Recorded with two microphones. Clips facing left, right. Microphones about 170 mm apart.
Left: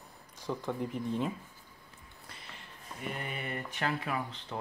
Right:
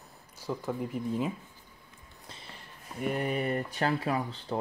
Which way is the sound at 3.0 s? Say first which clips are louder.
Right 9 dB; 45° right (ahead or behind).